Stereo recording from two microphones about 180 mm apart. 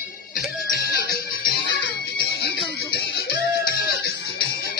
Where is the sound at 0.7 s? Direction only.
60° left (ahead or behind).